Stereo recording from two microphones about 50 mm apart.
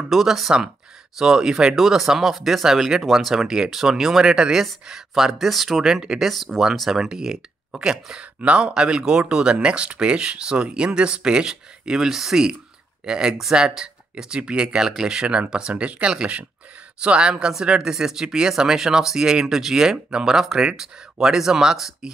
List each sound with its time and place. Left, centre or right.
0.1 s speech: centre